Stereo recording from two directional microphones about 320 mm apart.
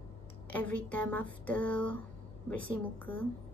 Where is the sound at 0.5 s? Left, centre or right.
Centre.